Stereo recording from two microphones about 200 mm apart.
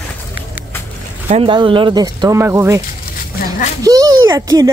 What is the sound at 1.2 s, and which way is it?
Speech, 30° right (ahead or behind).